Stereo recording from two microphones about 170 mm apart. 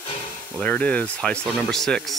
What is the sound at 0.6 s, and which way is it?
Speech, 10° left (ahead or behind).